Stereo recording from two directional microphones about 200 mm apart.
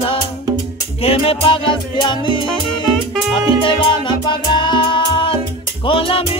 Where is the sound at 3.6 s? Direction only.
25° left (ahead or behind).